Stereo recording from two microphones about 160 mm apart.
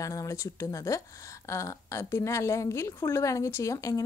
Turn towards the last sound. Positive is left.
turn(degrees=20)  # may be behind; listen again after turning